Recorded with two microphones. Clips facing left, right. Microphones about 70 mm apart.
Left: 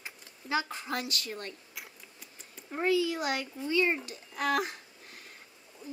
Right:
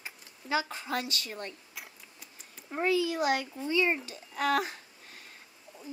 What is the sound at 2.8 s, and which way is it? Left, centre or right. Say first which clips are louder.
Speech: right 1 dB; right.